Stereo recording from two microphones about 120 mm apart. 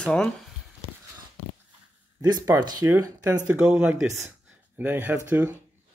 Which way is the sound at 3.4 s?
15° right (ahead or behind).